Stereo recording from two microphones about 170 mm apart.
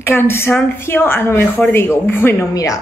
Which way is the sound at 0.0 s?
15° left (ahead or behind).